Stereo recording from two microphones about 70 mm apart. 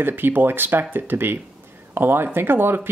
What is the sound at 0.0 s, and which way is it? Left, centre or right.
Speech, right.